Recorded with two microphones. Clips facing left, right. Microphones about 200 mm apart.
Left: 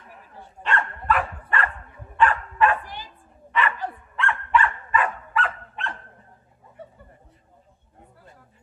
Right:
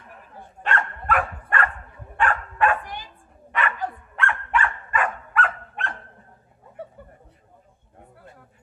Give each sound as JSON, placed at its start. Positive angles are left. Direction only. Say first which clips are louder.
{"t": 0.4, "sound": "dog", "louder": "even", "side_deg": -50}
{"t": 2.1, "sound": "bow-wow", "louder": "left 3 dB", "side_deg": -50}
{"t": 3.5, "sound": "dog", "louder": "left 1 dB", "side_deg": -50}